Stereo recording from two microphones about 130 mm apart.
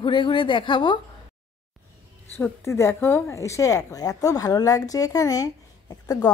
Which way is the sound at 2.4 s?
20° left (ahead or behind).